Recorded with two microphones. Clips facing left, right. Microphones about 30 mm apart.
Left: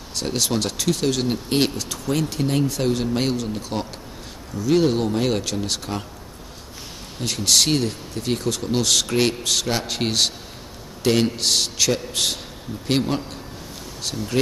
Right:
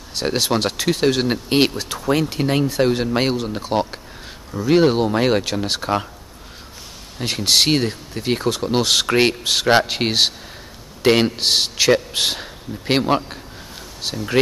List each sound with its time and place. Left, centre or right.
0.1 s speech: right
7.2 s a man's voice: right